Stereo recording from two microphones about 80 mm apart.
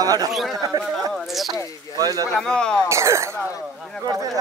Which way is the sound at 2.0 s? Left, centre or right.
Right.